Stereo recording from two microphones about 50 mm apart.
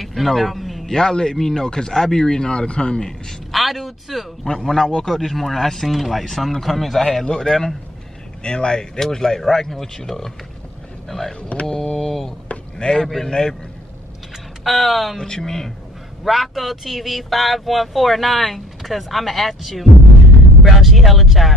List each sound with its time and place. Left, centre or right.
0.0 s a sound: centre
0.9 s speech: centre
3.5 s speech: centre
4.5 s speech: centre
12.7 s speech: centre
14.6 s speech: centre